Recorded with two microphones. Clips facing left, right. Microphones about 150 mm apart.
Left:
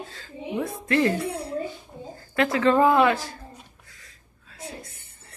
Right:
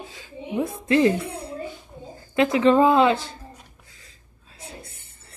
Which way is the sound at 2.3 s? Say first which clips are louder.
Right 3 dB; 20° right (ahead or behind).